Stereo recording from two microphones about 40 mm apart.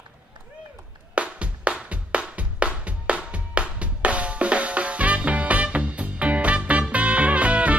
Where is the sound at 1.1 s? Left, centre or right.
Right.